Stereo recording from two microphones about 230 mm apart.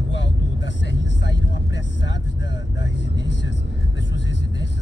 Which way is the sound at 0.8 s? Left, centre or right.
Left.